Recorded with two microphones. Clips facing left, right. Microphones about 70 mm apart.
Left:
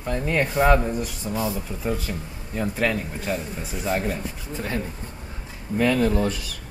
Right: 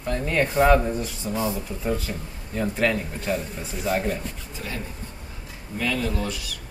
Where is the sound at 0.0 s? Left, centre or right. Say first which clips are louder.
Even; centre.